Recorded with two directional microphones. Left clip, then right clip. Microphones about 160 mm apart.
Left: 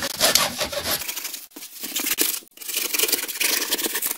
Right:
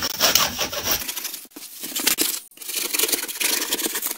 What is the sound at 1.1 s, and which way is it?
Tearing, 5° left (ahead or behind).